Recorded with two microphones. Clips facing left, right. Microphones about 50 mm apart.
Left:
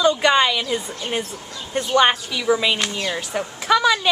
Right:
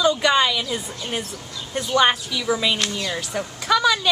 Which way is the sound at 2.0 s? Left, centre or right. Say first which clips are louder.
Left 1 dB; centre.